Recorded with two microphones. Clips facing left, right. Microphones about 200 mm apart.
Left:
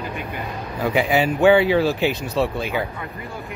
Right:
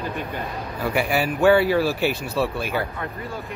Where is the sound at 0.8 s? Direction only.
20° left (ahead or behind).